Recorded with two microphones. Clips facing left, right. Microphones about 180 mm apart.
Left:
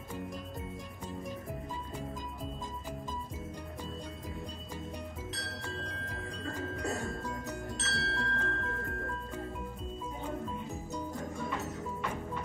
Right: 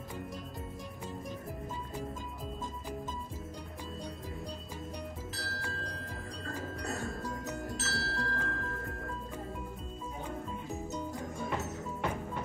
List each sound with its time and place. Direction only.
5.3 s music: centre (ahead or behind)
7.7 s tubular bells: centre (ahead or behind)